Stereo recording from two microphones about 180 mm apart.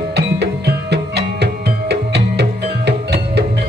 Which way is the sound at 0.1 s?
65° right (ahead or behind).